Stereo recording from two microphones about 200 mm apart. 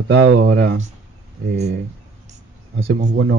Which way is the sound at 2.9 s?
60° right (ahead or behind).